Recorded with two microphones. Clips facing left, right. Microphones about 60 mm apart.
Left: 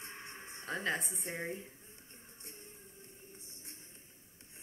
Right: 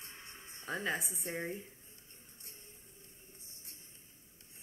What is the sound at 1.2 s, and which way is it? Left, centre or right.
Speech, left.